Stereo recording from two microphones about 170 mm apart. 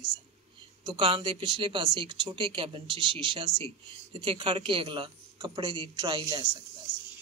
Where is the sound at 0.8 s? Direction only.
30° right (ahead or behind).